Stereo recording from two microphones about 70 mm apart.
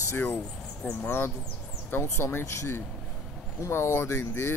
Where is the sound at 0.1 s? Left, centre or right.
Left.